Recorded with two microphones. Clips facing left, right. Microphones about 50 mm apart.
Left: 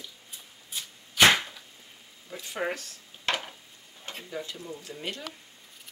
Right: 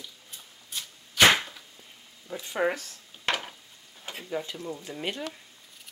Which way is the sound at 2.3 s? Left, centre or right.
Centre.